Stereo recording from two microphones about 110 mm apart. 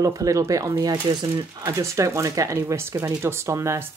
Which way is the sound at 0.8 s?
40° right (ahead or behind).